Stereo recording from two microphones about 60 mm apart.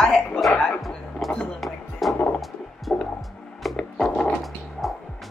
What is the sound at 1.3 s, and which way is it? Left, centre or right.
Music, centre.